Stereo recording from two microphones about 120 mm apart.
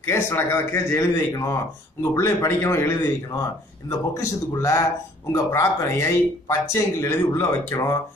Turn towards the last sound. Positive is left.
turn(degrees=20)  # may be behind; listen again after turning